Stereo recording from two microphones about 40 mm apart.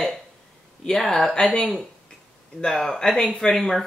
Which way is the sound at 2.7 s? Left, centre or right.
Centre.